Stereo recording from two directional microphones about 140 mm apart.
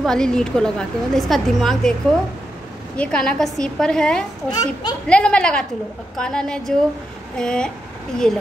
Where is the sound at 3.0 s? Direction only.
5° left (ahead or behind).